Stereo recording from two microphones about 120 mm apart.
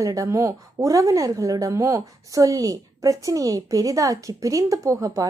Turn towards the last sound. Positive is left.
turn(degrees=-25)  # may be behind; listen again after turning